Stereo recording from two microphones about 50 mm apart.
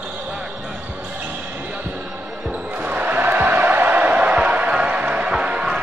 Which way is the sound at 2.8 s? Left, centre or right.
Right.